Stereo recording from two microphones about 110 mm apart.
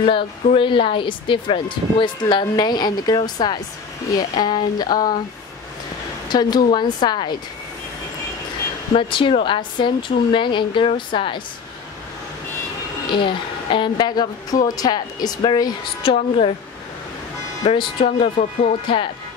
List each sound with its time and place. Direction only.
0.0 s a woman's voice: 50° left (ahead or behind)
6.2 s a woman's voice: 40° left (ahead or behind)
8.9 s a woman's voice: 50° left (ahead or behind)
13.1 s a woman's voice: 50° left (ahead or behind)
16.1 s speech: 65° left (ahead or behind)
17.6 s speech: 55° left (ahead or behind)
18.0 s speech: 65° left (ahead or behind)